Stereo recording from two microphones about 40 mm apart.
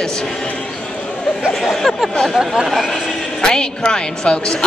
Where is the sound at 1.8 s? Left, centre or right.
Centre.